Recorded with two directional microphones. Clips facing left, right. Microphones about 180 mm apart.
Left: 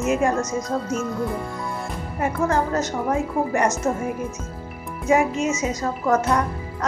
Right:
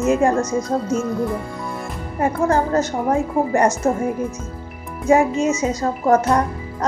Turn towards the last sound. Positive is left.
turn(degrees=-35)  # may be behind; listen again after turning